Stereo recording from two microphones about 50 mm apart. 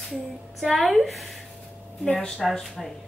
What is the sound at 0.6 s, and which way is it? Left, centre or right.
Speech, centre.